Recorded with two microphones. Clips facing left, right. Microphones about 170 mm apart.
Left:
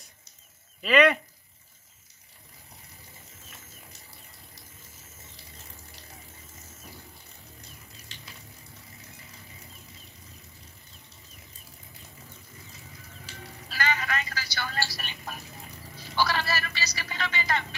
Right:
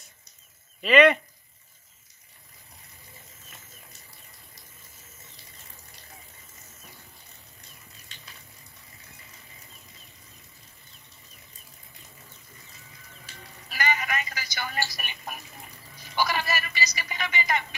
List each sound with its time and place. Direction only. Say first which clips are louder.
0.8 s speech: right 3 dB; centre (ahead or behind)
13.7 s telephone: right 1 dB; 15° right (ahead or behind)
16.0 s a sound: even; 15° right (ahead or behind)